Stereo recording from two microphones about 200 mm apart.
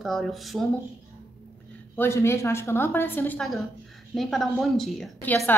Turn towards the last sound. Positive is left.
turn(degrees=0)  # may be behind; listen again after turning